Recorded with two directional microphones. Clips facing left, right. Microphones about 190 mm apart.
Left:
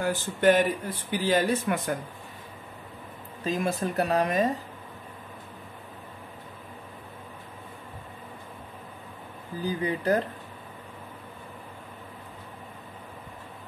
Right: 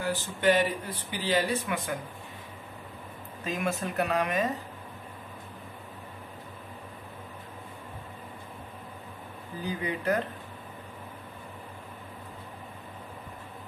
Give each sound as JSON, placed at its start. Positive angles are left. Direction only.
{"t": 0.0, "sound": "speech", "side_deg": 50}
{"t": 3.4, "sound": "speech", "side_deg": 35}
{"t": 9.6, "sound": "speech", "side_deg": 35}